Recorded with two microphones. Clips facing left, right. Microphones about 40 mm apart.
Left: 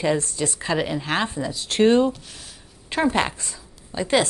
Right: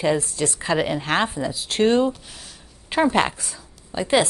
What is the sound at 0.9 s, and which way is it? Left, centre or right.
Speech, right.